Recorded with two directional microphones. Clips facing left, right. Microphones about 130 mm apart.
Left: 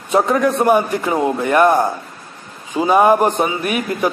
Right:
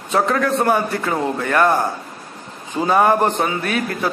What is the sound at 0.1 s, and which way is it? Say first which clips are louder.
A man's voice: left 3 dB; 15° left (ahead or behind).